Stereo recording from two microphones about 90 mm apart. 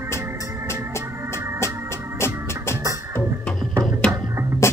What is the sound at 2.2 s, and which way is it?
Organ, 30° left (ahead or behind).